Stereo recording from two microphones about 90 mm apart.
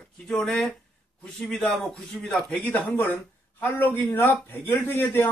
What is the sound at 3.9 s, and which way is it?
A man's voice, 25° left (ahead or behind).